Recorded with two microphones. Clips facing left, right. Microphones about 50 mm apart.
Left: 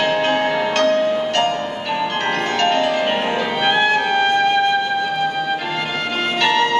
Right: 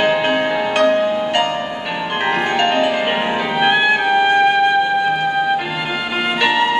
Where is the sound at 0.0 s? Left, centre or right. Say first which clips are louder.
Right 2 dB; centre.